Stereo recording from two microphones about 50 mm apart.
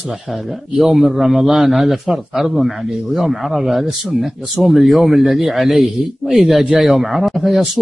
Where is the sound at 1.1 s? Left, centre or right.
Centre.